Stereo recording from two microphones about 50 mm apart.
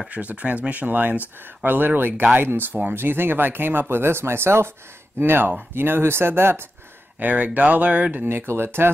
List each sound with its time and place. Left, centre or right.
0.1 s speech: right
5.2 s speech: right
7.2 s speech: right
8.3 s speech: right